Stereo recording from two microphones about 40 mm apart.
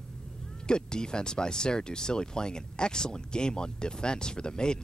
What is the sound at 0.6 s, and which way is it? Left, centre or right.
Speech, centre.